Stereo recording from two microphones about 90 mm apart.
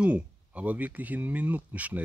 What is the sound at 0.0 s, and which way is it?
Speech, 15° right (ahead or behind).